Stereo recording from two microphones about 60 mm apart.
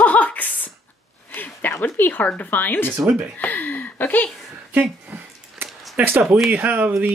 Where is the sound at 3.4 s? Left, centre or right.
Left.